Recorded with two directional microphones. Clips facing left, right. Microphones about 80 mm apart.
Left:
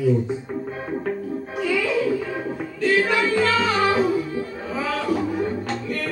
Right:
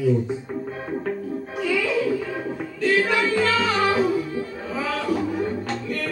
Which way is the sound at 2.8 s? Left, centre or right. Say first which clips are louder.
Left 1 dB; left.